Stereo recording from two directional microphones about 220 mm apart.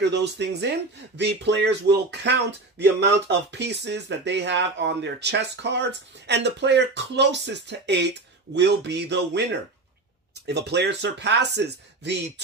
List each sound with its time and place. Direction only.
0.0 s speech: 50° right (ahead or behind)
10.4 s speech: 50° right (ahead or behind)